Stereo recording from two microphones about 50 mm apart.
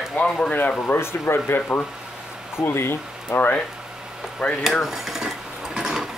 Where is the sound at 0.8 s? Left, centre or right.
Left.